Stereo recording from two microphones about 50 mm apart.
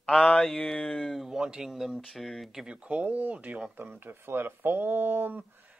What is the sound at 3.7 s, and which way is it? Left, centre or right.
Speech, right.